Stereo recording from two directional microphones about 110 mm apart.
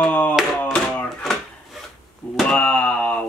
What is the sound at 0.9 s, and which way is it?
Drawer open or close, 5° left (ahead or behind).